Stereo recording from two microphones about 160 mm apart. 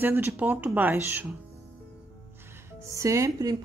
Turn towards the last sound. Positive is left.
turn(degrees=-20)  # may be behind; listen again after turning